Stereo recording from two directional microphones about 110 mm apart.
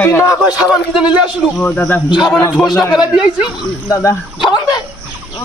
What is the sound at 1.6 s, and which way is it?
Speech, 15° left (ahead or behind).